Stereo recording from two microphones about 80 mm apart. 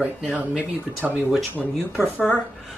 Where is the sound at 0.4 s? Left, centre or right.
Right.